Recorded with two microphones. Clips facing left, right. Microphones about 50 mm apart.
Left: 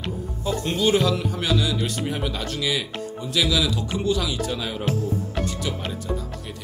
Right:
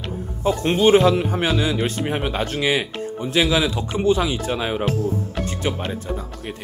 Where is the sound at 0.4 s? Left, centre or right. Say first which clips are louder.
Right 6 dB; right.